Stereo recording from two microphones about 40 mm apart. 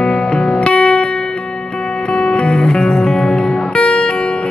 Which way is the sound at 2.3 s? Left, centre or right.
Left.